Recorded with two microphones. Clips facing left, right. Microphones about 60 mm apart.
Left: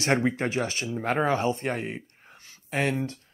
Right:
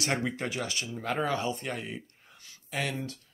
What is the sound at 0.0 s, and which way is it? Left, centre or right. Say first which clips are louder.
Speech: left 6 dB; left.